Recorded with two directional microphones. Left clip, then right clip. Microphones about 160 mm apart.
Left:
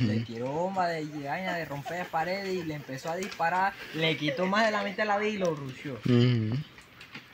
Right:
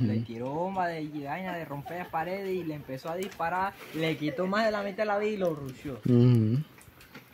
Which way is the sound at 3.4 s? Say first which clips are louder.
Left 4 dB; 35° left (ahead or behind).